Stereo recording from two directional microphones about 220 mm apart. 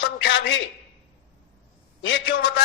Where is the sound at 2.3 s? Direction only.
45° left (ahead or behind).